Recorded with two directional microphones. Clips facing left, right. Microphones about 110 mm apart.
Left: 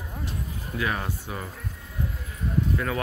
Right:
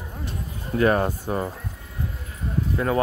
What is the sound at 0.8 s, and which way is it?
Speech, 45° right (ahead or behind).